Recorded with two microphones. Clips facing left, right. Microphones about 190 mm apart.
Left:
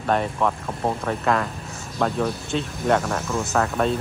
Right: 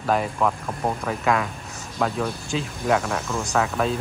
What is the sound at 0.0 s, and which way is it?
Speech, centre (ahead or behind).